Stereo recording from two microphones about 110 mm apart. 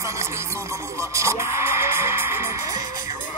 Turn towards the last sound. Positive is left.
turn(degrees=-20)  # may be behind; listen again after turning